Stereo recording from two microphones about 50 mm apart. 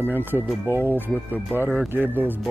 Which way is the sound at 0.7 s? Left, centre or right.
Right.